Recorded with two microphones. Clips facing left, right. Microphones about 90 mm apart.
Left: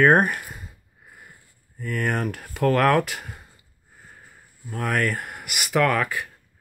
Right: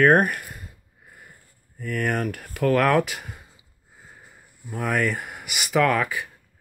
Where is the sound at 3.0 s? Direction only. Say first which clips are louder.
Left 1 dB; 10° right (ahead or behind).